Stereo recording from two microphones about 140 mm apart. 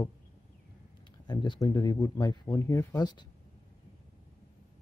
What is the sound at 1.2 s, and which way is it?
Speech, 35° left (ahead or behind).